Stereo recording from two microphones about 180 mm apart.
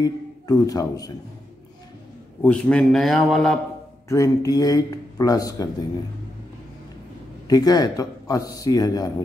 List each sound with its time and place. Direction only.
0.0 s a man's voice: 20° left (ahead or behind)
2.4 s a man's voice: 5° left (ahead or behind)
4.1 s speech: 20° left (ahead or behind)
7.4 s speech: 20° left (ahead or behind)